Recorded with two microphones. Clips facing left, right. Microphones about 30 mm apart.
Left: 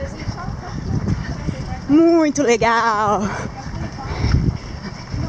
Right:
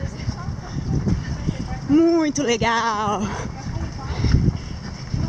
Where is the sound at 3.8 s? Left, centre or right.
Centre.